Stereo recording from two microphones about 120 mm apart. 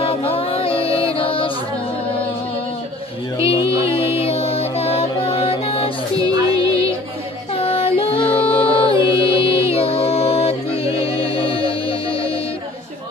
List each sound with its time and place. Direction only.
0.0 s music: 50° left (ahead or behind)
3.7 s music: 50° left (ahead or behind)
6.1 s music: 30° right (ahead or behind)
6.5 s music: 50° left (ahead or behind)